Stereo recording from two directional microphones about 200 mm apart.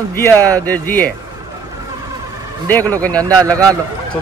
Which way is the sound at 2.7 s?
10° left (ahead or behind).